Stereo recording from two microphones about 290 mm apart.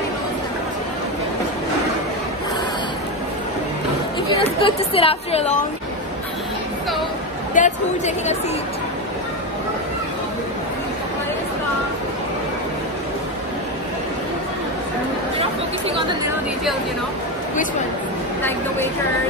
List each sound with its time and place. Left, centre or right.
4.4 s speech: centre
7.5 s a woman's voice: left